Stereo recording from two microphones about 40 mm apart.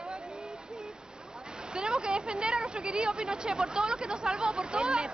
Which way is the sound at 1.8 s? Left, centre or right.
Right.